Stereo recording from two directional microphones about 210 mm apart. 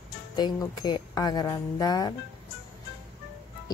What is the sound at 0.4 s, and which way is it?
Speech, 20° left (ahead or behind).